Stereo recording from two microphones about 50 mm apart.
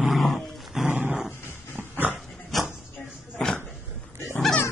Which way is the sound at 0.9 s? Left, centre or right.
Right.